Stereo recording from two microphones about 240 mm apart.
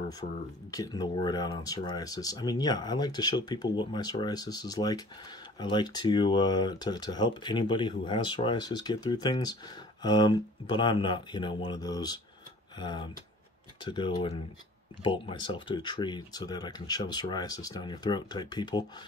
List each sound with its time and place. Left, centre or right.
0.7 s speech: centre